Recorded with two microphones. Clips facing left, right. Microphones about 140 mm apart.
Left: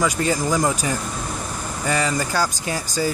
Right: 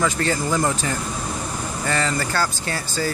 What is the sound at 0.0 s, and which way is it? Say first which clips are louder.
Speech: left 1 dB; 10° left (ahead or behind).